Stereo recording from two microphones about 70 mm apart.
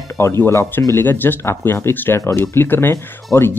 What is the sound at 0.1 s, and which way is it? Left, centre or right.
Speech, left.